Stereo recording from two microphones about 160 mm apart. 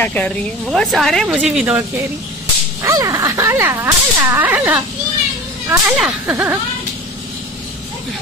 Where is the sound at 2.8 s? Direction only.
20° right (ahead or behind).